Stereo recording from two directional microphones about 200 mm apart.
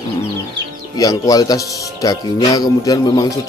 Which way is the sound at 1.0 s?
20° left (ahead or behind).